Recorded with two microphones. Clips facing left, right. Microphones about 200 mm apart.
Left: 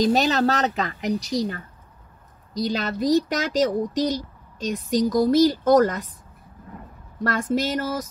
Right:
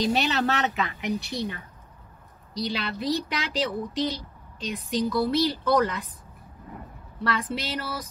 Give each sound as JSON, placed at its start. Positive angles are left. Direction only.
{"t": 0.0, "sound": "a woman's voice", "side_deg": 40}
{"t": 7.2, "sound": "speech", "side_deg": 45}